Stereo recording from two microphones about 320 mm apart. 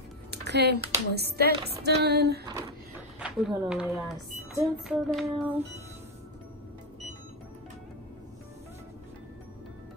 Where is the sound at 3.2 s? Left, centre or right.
Centre.